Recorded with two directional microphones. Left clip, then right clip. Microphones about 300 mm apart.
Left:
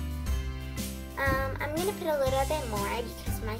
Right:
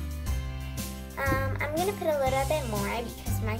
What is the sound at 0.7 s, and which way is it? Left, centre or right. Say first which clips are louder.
Music: left 1 dB; centre.